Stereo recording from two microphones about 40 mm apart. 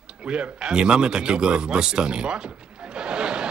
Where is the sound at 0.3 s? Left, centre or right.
Right.